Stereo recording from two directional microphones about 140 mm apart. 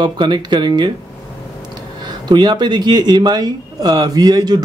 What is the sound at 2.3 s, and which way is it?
Speech, 30° right (ahead or behind).